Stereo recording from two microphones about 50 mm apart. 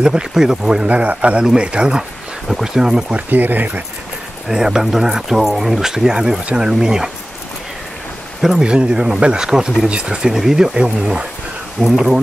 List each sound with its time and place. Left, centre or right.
0.0 s speech: centre
0.8 s a man's voice: right
3.2 s speech: right
4.5 s speech: centre
8.4 s speech: centre
11.8 s speech: centre